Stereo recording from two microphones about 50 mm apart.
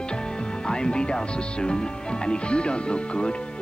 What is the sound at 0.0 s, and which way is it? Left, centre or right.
Speech, centre.